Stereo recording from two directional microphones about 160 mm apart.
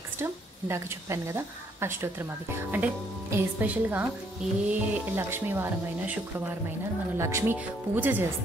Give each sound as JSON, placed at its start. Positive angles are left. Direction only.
{"t": 0.2, "sound": "a woman's voice", "side_deg": -15}
{"t": 7.2, "sound": "a woman's voice", "side_deg": -15}